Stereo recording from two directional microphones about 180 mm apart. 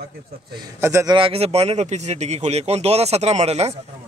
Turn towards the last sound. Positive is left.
turn(degrees=-35)  # may be behind; listen again after turning